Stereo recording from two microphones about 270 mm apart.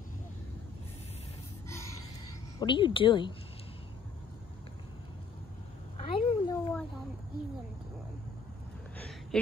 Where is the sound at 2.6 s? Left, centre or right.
Centre.